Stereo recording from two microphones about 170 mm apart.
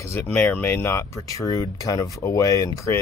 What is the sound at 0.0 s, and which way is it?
Speech, 15° left (ahead or behind).